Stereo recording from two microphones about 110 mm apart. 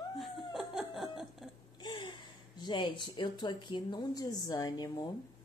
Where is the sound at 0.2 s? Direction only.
Centre (ahead or behind).